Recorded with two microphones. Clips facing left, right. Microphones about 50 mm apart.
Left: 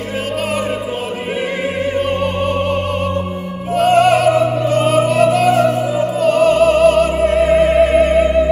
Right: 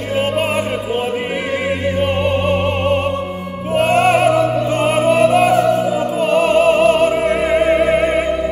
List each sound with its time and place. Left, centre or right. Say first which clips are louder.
3.7 s music: left 2 dB; right
7.6 s opera: left 2 dB; right